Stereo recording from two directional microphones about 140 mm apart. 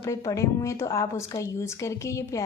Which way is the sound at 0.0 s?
20° left (ahead or behind).